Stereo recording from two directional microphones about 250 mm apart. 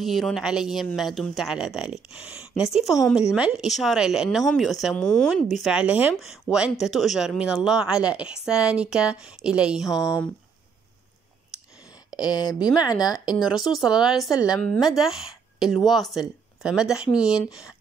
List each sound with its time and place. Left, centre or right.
0.0 s speech: centre
12.3 s speech: centre
13.4 s speech: centre